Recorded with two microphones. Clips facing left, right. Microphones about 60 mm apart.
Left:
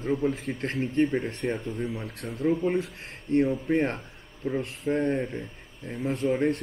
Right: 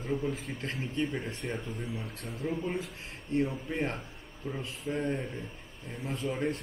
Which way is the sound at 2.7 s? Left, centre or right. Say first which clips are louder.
Left 7 dB; left.